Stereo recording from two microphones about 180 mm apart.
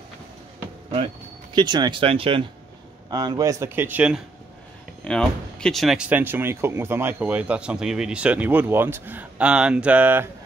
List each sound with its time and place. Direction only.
1.5 s speech: 25° right (ahead or behind); by 4.2 s 10° right (ahead or behind)
5.0 s speech: 5° left (ahead or behind)